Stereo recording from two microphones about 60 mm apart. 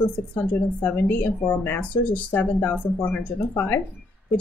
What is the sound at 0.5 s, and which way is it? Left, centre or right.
Speech, left.